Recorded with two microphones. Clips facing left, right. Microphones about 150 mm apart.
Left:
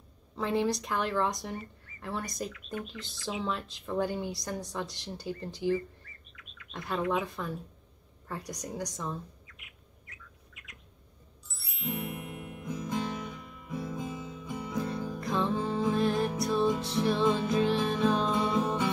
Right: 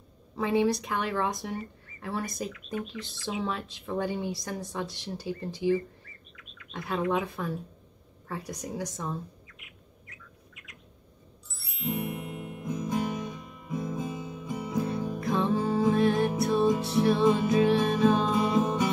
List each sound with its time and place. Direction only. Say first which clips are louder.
0.4 s speech: right 4 dB; 5° right (ahead or behind)
8.3 s bird: right 2 dB; centre (ahead or behind)
11.5 s music: right 4 dB; centre (ahead or behind)
13.3 s music: right 3 dB; 20° right (ahead or behind)
15.1 s music: right 3 dB; centre (ahead or behind)
16.8 s speech: right 4 dB; centre (ahead or behind)
17.3 s music: right 4 dB; 5° right (ahead or behind)